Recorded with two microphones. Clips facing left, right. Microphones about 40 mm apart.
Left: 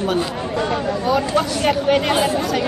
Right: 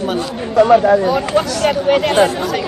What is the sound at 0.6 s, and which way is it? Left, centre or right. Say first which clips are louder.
Speech: right 13 dB; right.